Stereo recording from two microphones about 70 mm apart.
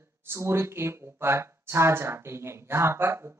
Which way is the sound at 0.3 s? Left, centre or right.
Right.